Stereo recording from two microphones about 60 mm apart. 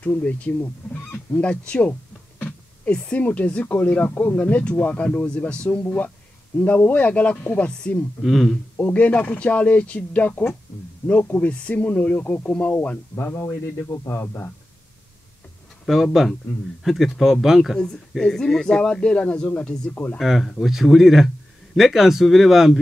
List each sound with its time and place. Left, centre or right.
0.0 s speech: left
1.1 s fowl: left
2.9 s speech: left
8.2 s speech: centre
8.7 s speech: left
14.0 s speech: left
15.8 s speech: centre
17.7 s speech: centre
20.2 s speech: centre